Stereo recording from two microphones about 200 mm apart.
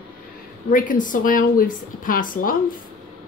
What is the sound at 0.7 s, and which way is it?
Speech, 40° left (ahead or behind).